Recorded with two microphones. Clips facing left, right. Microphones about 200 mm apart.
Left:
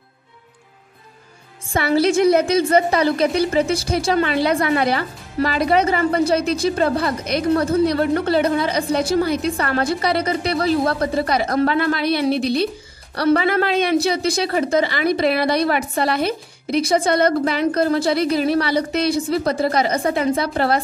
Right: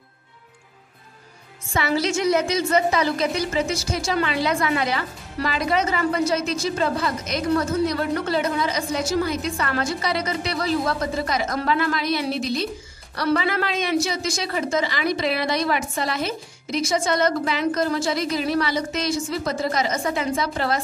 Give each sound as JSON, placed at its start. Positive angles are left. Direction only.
{"t": 2.0, "sound": "a woman's voice", "side_deg": 55}
{"t": 7.5, "sound": "a woman's voice", "side_deg": 35}
{"t": 7.8, "sound": "a woman's voice", "side_deg": 60}
{"t": 8.6, "sound": "a woman's voice", "side_deg": 35}
{"t": 9.8, "sound": "a woman's voice", "side_deg": 60}